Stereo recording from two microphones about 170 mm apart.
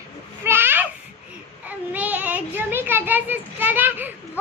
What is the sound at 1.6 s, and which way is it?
Child singing, 10° right (ahead or behind).